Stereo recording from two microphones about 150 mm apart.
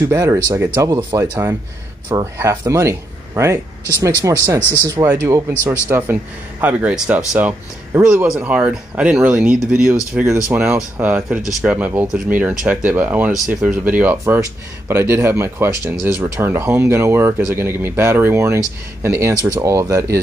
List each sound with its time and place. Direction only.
0.1 s speech: 20° right (ahead or behind)